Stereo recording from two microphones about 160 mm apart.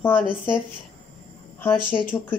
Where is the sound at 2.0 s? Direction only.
10° left (ahead or behind).